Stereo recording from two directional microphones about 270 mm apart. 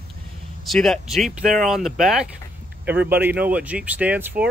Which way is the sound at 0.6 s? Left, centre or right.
Centre.